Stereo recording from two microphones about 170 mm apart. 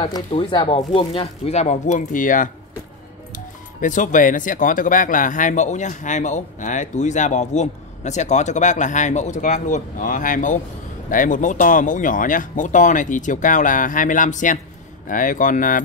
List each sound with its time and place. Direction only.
0.0 s speech: 30° left (ahead or behind); by 2.5 s 50° left (ahead or behind)
3.8 s speech: 50° left (ahead or behind)